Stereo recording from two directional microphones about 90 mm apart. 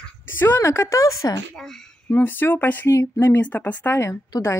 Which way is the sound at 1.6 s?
5° left (ahead or behind).